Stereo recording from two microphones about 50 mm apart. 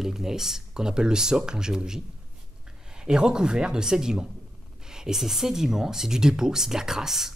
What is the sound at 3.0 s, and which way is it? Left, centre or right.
Speech, centre.